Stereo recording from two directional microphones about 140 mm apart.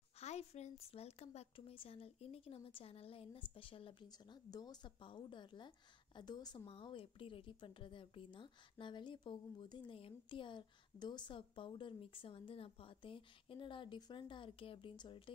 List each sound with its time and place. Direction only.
0.2 s speech: 50° left (ahead or behind)
4.5 s a woman's voice: 30° left (ahead or behind)